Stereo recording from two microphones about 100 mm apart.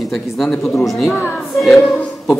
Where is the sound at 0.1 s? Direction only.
5° left (ahead or behind).